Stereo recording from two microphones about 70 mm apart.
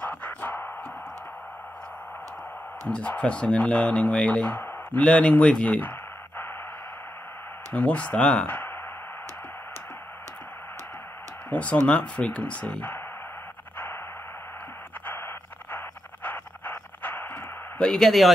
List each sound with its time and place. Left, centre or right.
0.0 s music: left
2.9 s speech: centre
7.7 s speech: centre
8.5 s speech: left
11.5 s speech: centre
15.0 s a sound: left
17.7 s speech: centre